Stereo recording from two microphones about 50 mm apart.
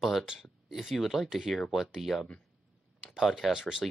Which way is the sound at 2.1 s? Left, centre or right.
Centre.